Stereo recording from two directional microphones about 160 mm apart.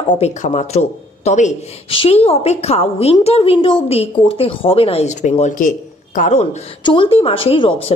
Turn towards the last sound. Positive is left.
turn(degrees=35)  # may be behind; listen again after turning